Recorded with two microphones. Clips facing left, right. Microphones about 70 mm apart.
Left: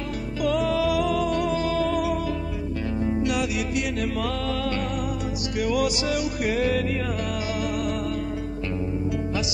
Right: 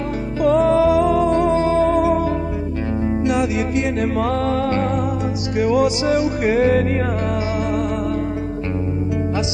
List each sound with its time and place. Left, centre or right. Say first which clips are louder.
0.4 s music: right 9 dB; right